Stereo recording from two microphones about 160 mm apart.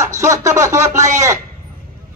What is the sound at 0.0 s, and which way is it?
Music, 20° right (ahead or behind).